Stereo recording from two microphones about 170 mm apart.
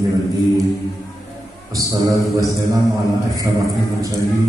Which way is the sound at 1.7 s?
20° right (ahead or behind).